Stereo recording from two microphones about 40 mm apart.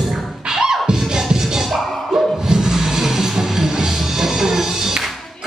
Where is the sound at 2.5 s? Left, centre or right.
Centre.